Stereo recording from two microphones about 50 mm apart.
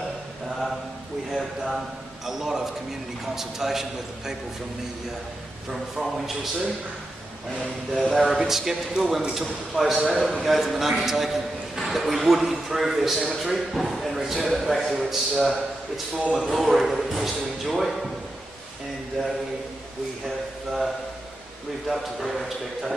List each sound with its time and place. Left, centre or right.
1.3 s a man's voice: centre
5.7 s a man's voice: centre
8.0 s a man's voice: centre
21.8 s a man's voice: centre